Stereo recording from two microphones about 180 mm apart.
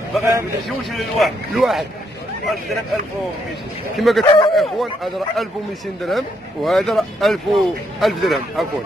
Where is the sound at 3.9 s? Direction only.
Centre (ahead or behind).